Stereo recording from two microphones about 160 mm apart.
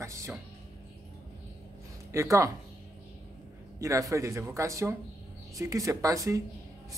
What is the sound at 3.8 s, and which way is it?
Speech, 20° right (ahead or behind).